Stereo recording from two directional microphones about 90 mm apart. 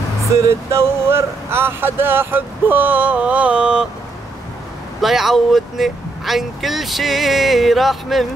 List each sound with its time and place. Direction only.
0.3 s speech: 35° right (ahead or behind); by 3.8 s 10° right (ahead or behind)
5.0 s speech: centre (ahead or behind)